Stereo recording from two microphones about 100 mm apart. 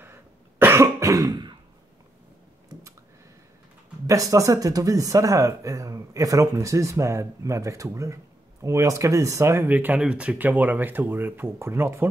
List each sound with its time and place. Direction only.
0.0 s cough: 20° right (ahead or behind); by 1.6 s 45° right (ahead or behind)
4.1 s speech: 35° right (ahead or behind)